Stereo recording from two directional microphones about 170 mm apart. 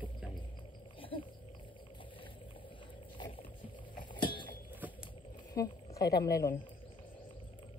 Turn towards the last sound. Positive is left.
turn(degrees=20)  # may be behind; listen again after turning